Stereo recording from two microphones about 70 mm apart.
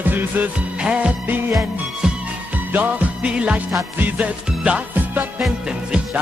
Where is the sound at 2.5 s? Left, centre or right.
Right.